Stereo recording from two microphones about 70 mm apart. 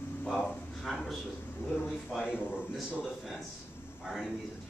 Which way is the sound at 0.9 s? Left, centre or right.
Centre.